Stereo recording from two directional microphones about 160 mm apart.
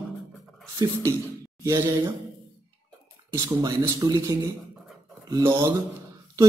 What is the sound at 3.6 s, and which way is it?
Speech, 20° right (ahead or behind).